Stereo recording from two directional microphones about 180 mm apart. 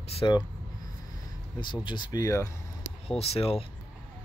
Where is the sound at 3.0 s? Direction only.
35° left (ahead or behind).